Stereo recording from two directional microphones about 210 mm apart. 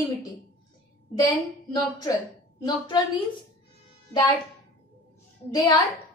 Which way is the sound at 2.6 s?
20° left (ahead or behind).